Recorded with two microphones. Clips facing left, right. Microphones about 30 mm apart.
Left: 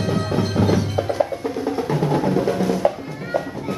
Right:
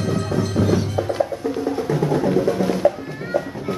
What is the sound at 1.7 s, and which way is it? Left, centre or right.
Music, centre.